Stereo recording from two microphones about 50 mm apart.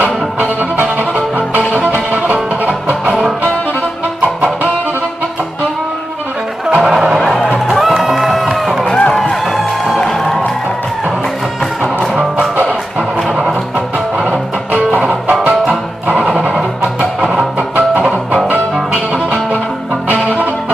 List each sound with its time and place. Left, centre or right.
0.0 s music: right
6.7 s music: centre
8.8 s music: centre
13.3 s music: centre
16.3 s music: centre
17.6 s music: right